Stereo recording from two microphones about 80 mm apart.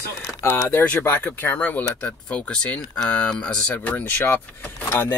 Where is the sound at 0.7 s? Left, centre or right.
Left.